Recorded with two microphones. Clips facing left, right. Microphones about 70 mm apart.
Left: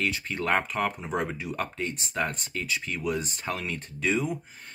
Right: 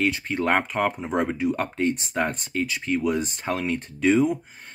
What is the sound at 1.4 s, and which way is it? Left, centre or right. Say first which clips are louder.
Speech: right 8 dB; right.